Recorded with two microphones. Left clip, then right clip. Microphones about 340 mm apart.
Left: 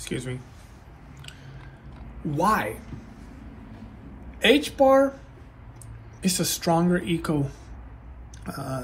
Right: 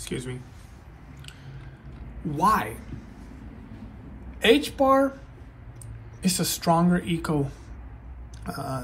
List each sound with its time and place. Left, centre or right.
0.0 s speech: centre
2.3 s speech: centre
4.4 s speech: centre
6.2 s speech: centre